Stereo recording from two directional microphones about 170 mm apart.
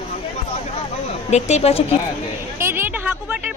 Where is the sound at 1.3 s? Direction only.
40° left (ahead or behind).